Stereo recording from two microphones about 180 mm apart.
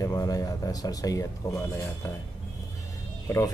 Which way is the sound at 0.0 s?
20° left (ahead or behind).